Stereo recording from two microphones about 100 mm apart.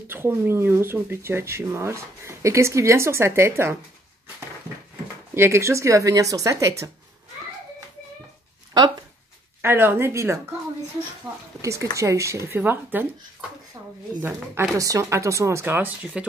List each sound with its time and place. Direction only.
0.1 s speech: 20° right (ahead or behind)
5.3 s speech: 25° right (ahead or behind)
9.6 s speech: 25° right (ahead or behind)
11.3 s speech: 5° right (ahead or behind)
11.6 s speech: 30° right (ahead or behind)
14.2 s speech: 25° right (ahead or behind)